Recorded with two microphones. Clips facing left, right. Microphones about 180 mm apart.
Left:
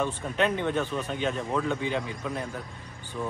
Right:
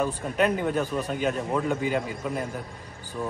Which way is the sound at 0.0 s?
5° right (ahead or behind).